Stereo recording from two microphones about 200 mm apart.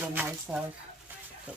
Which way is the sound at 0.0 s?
10° right (ahead or behind).